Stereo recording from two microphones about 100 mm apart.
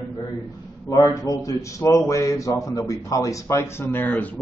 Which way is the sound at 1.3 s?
35° left (ahead or behind).